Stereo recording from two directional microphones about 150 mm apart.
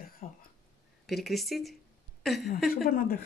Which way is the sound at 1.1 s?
Centre (ahead or behind).